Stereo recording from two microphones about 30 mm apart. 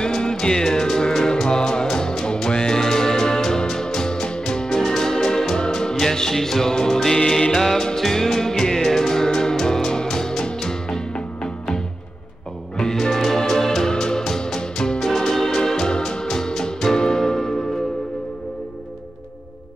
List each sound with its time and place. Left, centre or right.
0.0 s music: left
13.0 s music: centre